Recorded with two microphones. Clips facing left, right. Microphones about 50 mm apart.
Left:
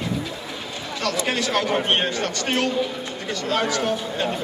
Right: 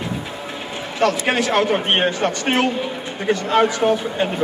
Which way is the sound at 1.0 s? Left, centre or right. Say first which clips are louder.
Right 6 dB; right.